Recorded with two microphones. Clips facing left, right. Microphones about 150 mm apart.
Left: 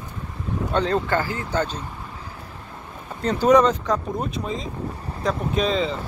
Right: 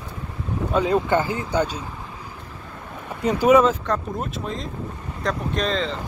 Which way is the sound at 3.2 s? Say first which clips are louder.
Right 1 dB; 10° right (ahead or behind).